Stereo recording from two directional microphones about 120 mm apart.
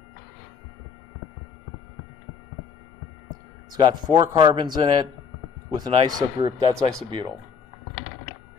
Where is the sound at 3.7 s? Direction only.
35° right (ahead or behind).